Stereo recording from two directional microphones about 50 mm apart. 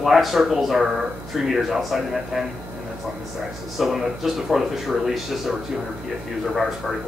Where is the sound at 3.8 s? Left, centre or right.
Centre.